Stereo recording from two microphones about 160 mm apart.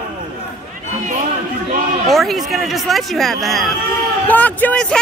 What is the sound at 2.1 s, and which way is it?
A man's voice, centre (ahead or behind).